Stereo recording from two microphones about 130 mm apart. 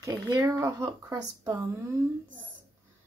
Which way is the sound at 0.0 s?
25° right (ahead or behind).